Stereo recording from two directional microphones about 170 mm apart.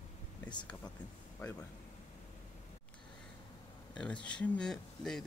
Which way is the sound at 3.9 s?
5° left (ahead or behind).